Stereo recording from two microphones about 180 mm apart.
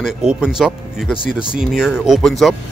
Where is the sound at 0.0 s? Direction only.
5° right (ahead or behind).